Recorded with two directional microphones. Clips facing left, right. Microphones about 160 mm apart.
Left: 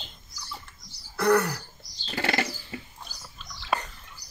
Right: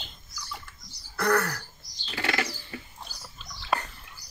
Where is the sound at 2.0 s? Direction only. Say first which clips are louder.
Left 2 dB; 35° left (ahead or behind).